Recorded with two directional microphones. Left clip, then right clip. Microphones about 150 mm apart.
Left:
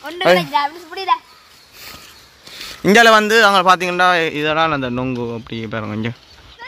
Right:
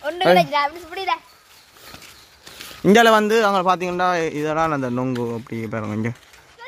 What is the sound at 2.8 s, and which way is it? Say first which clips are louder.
Speech: left 4 dB; 15° right (ahead or behind).